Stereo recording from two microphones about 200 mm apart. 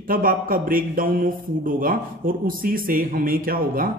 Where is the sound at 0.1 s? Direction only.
45° right (ahead or behind).